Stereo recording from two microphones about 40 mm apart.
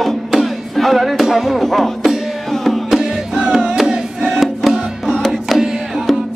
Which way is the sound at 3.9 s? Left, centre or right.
Centre.